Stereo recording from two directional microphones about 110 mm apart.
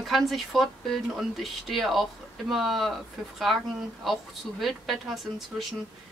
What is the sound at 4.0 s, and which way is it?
Speech, centre (ahead or behind).